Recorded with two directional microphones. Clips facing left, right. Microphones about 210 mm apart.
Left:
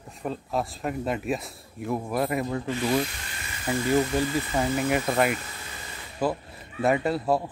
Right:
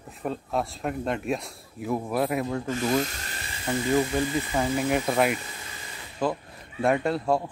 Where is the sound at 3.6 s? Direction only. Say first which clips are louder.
Even; 5° left (ahead or behind).